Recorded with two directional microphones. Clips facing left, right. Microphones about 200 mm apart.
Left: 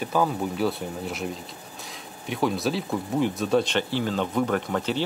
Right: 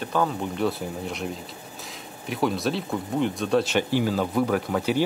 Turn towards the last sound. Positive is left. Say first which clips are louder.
# right 2 dB
turn(degrees=-10)  # may be behind; listen again after turning